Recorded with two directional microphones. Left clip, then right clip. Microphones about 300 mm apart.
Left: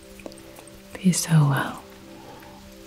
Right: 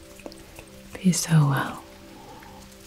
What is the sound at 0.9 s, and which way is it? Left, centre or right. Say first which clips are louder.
Speech: left 1 dB; centre.